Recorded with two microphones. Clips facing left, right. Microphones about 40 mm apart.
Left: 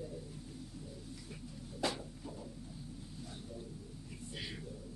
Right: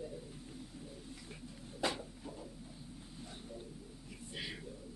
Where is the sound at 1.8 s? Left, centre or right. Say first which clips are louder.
Even; centre.